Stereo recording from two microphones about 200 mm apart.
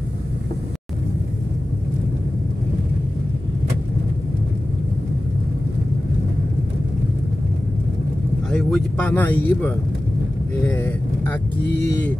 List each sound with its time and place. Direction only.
8.5 s speech: 5° left (ahead or behind)